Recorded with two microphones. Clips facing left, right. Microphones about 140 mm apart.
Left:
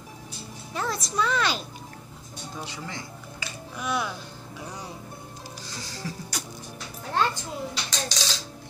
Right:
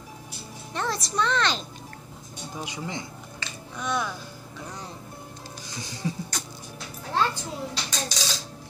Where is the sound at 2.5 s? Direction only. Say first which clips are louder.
Right 3 dB; 15° right (ahead or behind).